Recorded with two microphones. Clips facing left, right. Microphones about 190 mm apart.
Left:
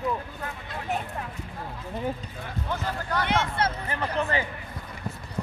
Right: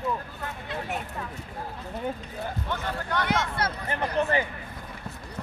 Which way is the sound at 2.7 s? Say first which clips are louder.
Left 3 dB; 5° left (ahead or behind).